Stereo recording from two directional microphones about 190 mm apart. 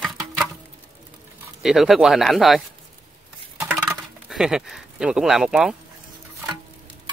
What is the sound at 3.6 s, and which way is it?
Patter, 15° right (ahead or behind).